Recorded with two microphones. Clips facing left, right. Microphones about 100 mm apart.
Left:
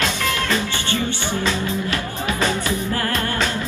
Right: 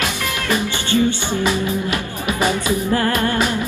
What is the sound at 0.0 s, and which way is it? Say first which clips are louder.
Music: left 1 dB; 15° right (ahead or behind).